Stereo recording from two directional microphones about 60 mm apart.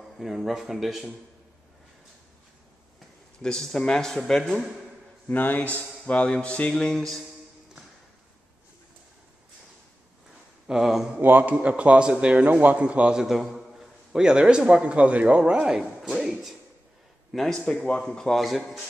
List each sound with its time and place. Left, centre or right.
0.2 s speech: centre
3.4 s speech: centre
5.3 s speech: left; by 7.2 s centre
10.7 s speech: centre
11.1 s a man's voice: right
13.2 s a man's voice: centre
15.7 s a sound: centre
17.3 s a man's voice: centre
17.6 s speech: centre